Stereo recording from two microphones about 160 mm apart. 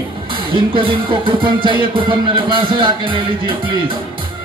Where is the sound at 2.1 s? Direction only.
30° right (ahead or behind).